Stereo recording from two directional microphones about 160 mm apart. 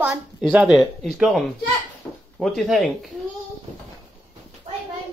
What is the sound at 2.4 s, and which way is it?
Speech, centre (ahead or behind).